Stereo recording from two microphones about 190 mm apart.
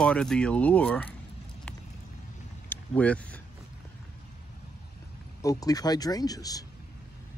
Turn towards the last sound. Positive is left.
turn(degrees=20)  # may be behind; listen again after turning